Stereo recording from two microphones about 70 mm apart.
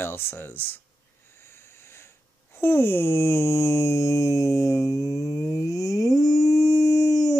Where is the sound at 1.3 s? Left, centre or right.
Left.